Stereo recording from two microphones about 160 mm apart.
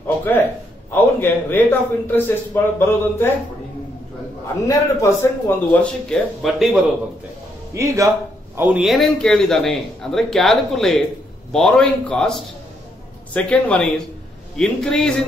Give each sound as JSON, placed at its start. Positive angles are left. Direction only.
{"t": 0.2, "sound": "a man's voice", "side_deg": 10}
{"t": 4.6, "sound": "a man's voice", "side_deg": 15}
{"t": 7.7, "sound": "a man's voice", "side_deg": -20}
{"t": 8.5, "sound": "a man's voice", "side_deg": -10}